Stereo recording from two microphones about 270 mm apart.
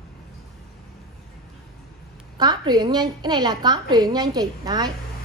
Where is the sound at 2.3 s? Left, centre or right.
Centre.